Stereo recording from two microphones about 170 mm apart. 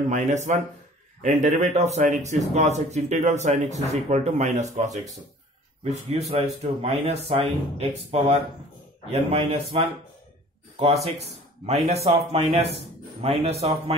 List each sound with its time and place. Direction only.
0.1 s a man's voice: 45° right (ahead or behind)
6.0 s speech: 40° right (ahead or behind)
11.1 s speech: 40° right (ahead or behind)